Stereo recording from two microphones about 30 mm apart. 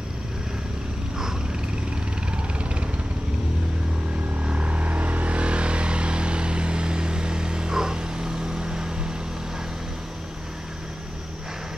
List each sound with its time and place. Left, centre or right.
2.3 s vehicle: right
4.4 s vehicle: right